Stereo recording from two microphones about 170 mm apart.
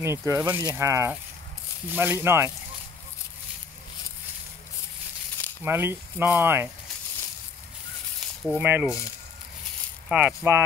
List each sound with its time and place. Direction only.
0.0 s speech: 15° right (ahead or behind)
5.6 s speech: 15° right (ahead or behind)
8.5 s speech: 10° right (ahead or behind)
10.0 s speech: 5° right (ahead or behind)